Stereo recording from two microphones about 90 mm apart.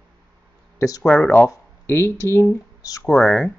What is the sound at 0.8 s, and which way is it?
Speech, 40° left (ahead or behind).